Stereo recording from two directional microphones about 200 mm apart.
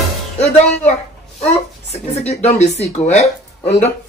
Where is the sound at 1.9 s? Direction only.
35° left (ahead or behind).